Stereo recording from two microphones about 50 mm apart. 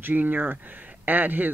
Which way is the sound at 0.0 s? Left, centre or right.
Right.